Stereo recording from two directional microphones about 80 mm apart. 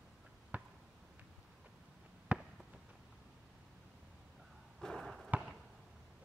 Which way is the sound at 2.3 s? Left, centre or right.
Centre.